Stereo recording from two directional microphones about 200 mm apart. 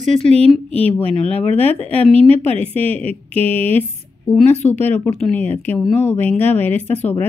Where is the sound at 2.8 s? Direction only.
10° left (ahead or behind).